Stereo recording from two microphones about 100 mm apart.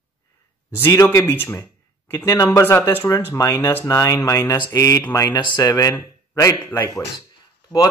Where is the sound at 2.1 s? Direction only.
35° left (ahead or behind).